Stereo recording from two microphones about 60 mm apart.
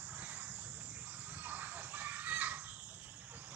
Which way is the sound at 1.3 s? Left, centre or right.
Right.